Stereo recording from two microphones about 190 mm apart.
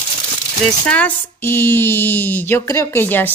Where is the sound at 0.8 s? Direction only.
5° left (ahead or behind).